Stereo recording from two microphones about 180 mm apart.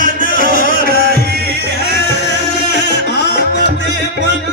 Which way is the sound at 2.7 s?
70° left (ahead or behind).